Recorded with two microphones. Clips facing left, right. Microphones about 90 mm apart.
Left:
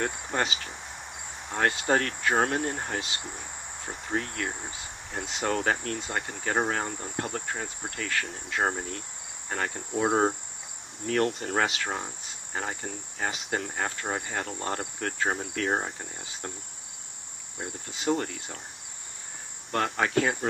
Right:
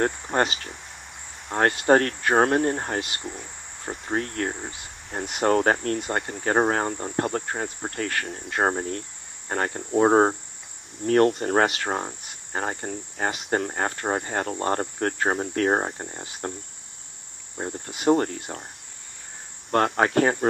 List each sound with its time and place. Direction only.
0.0 s speech: 40° right (ahead or behind)
3.8 s cricket: 40° right (ahead or behind)
5.2 s speech: 50° right (ahead or behind)
8.6 s cricket: 40° right (ahead or behind)
11.1 s speech: 45° right (ahead or behind)
14.6 s cricket: 45° right (ahead or behind)
17.6 s cricket: 35° right (ahead or behind)
17.9 s speech: 45° right (ahead or behind)
19.7 s speech: 45° right (ahead or behind)